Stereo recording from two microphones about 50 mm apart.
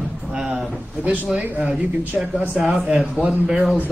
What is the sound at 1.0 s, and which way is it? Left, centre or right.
Speech, right.